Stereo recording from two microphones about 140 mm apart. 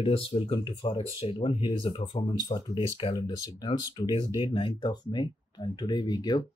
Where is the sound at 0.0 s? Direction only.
40° left (ahead or behind).